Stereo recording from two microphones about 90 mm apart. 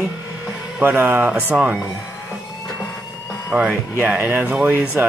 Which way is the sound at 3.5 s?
10° right (ahead or behind).